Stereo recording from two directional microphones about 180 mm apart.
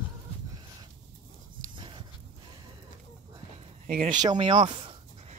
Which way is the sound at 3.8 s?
45° right (ahead or behind).